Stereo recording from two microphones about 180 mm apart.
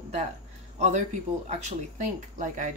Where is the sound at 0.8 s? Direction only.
40° right (ahead or behind).